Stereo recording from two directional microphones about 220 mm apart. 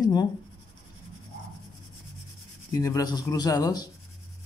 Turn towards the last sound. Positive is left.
turn(degrees=15)  # may be behind; listen again after turning